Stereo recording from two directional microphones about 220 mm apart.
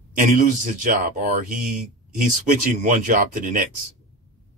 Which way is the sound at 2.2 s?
35° right (ahead or behind).